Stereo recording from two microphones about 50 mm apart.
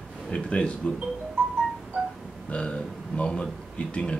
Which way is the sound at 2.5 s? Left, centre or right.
Left.